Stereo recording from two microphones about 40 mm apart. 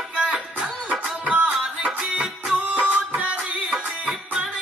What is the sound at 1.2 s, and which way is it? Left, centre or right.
Music, right.